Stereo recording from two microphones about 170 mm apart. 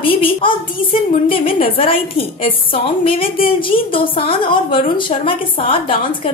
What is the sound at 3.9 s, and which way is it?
Speech, 30° left (ahead or behind).